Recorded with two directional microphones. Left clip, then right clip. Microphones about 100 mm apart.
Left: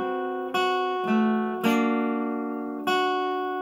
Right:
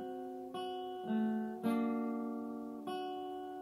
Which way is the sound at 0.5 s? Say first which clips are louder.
Left 18 dB; 15° left (ahead or behind).